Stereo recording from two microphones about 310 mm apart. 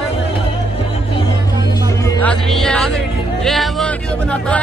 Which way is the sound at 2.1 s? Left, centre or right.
Centre.